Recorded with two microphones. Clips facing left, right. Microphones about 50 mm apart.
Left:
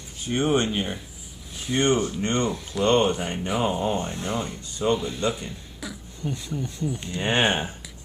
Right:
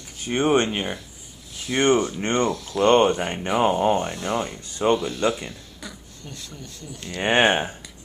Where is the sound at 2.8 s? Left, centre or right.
Right.